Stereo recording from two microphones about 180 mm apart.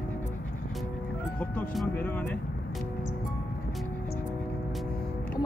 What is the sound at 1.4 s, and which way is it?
Speech, 10° left (ahead or behind).